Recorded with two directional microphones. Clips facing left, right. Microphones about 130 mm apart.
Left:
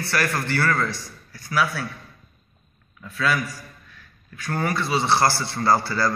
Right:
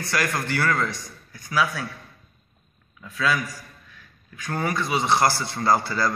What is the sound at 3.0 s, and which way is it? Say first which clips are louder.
Speech: even; 15° right (ahead or behind).